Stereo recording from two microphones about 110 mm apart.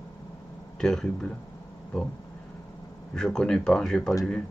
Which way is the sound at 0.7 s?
5° left (ahead or behind).